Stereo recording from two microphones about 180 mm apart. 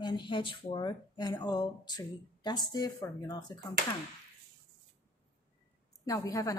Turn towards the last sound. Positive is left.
turn(degrees=20)  # may be behind; listen again after turning